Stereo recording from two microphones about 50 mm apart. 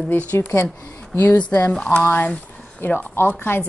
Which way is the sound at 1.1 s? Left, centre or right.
Left.